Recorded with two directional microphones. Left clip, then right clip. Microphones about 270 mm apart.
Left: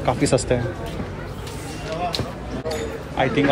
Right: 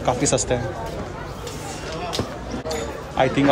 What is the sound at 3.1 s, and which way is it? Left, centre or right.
Speech, centre.